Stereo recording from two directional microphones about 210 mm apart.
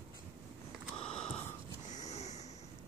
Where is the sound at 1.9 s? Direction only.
35° left (ahead or behind).